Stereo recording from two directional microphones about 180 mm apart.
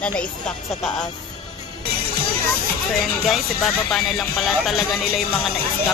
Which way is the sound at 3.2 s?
Centre (ahead or behind).